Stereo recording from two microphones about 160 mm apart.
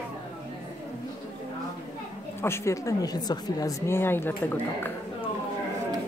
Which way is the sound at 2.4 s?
15° left (ahead or behind).